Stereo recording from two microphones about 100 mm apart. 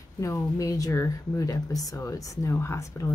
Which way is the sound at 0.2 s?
30° left (ahead or behind).